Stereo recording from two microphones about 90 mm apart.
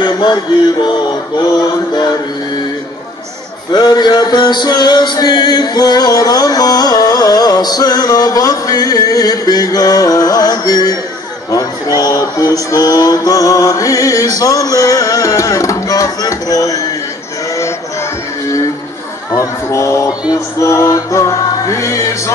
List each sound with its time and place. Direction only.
0.0 s music: 55° left (ahead or behind)
3.7 s music: 50° left (ahead or behind)
11.5 s speech: 45° left (ahead or behind)
19.3 s speech: 35° left (ahead or behind)